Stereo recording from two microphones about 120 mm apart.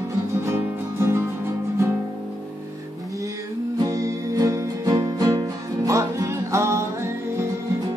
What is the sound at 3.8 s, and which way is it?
Music, 30° right (ahead or behind).